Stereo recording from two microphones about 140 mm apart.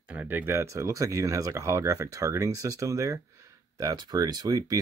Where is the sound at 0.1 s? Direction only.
10° right (ahead or behind).